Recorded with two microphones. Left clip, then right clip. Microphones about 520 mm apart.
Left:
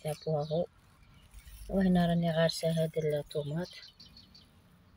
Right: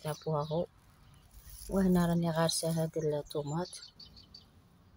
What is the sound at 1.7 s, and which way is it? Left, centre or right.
Speech, right.